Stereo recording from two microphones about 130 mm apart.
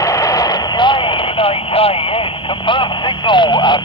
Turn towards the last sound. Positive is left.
turn(degrees=35)  # may be behind; listen again after turning